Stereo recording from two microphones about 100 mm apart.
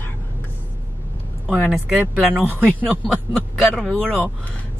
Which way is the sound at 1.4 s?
5° left (ahead or behind).